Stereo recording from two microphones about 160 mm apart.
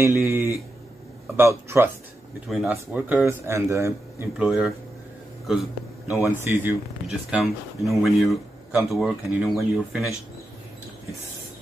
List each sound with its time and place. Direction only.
0.2 s speech: 15° right (ahead or behind)
2.5 s speech: centre (ahead or behind)
6.3 s speech: 10° right (ahead or behind)